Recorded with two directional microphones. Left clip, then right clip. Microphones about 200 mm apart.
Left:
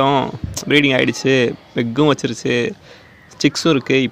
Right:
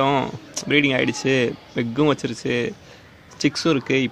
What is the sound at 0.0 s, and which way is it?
A man's voice, 15° left (ahead or behind).